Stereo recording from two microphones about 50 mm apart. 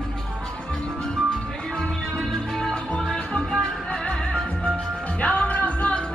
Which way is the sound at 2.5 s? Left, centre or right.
Centre.